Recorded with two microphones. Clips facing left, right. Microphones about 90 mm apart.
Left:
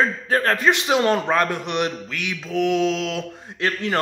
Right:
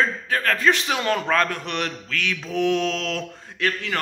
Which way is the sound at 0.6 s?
20° left (ahead or behind).